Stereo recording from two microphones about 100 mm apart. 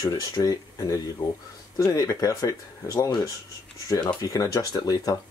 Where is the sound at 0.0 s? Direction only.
40° left (ahead or behind).